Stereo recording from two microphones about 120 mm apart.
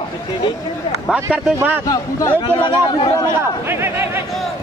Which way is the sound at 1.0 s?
10° right (ahead or behind).